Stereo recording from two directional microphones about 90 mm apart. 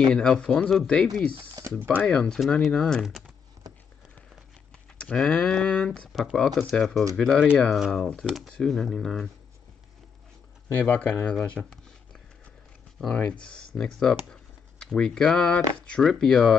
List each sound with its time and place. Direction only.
0.1 s speech: 10° left (ahead or behind)
1.6 s a sound: 40° right (ahead or behind)
2.0 s speech: 10° left (ahead or behind)
4.9 s speech: 10° left (ahead or behind)
10.7 s speech: 20° left (ahead or behind)
11.3 s a sound: 10° left (ahead or behind)
13.1 s speech: 10° left (ahead or behind)